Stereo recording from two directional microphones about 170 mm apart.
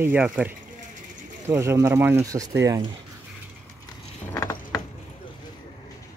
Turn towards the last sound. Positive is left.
turn(degrees=15)  # may be behind; listen again after turning